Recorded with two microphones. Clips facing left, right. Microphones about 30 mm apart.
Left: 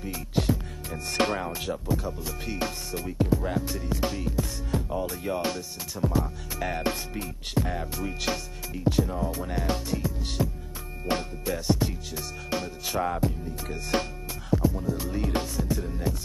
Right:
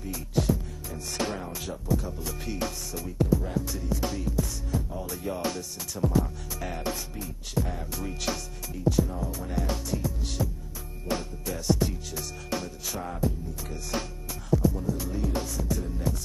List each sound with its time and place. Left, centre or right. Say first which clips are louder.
0.0 s music: left 1 dB; left
0.9 s music: left 5 dB; left
1.5 s music: left 1 dB; left
6.6 s music: left 6 dB; left
6.9 s music: left 2 dB; left
7.9 s music: left 2 dB; centre
8.7 s music: left 1 dB; left
11.4 s music: even; left
12.9 s music: left 5 dB; left
14.5 s music: even; left
15.1 s music: left 3 dB; left
15.4 s music: left 2 dB; left